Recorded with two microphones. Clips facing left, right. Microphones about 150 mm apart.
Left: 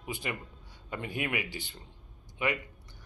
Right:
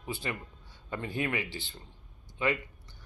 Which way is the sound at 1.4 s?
30° right (ahead or behind).